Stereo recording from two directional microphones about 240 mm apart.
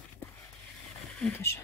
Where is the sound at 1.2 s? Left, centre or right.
Centre.